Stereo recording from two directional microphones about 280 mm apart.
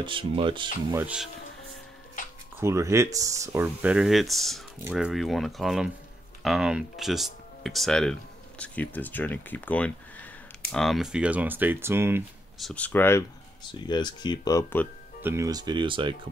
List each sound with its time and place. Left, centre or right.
0.0 s speech: centre
1.0 s speech: centre
2.6 s speech: centre
15.2 s speech: centre